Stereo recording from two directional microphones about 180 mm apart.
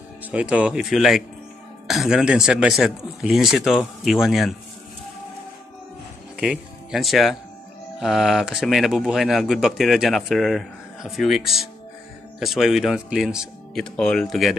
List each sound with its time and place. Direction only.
0.3 s a man's voice: 5° right (ahead or behind)
6.3 s a man's voice: 5° right (ahead or behind)